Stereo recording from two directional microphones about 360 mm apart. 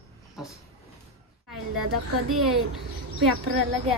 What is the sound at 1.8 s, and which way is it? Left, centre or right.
Speech, right.